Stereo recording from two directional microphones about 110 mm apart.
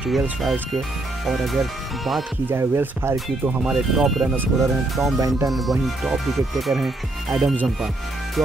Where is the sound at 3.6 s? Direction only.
5° right (ahead or behind).